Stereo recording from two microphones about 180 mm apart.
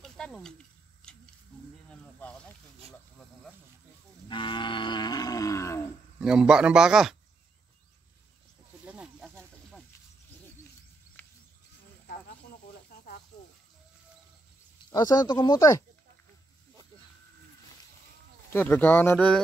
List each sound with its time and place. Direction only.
0.0 s snake: centre (ahead or behind)
1.0 s a sound: 5° left (ahead or behind)
1.9 s snake: 5° left (ahead or behind)
4.3 s livestock: 25° left (ahead or behind)
6.1 s speech: 5° right (ahead or behind)
8.8 s snake: 5° right (ahead or behind)
11.2 s goat: 10° left (ahead or behind)
14.9 s speech: 20° left (ahead or behind)
18.5 s speech: 10° left (ahead or behind)